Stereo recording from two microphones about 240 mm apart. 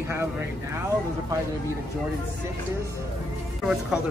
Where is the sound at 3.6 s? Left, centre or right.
Centre.